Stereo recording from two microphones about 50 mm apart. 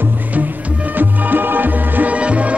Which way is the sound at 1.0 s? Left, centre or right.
Right.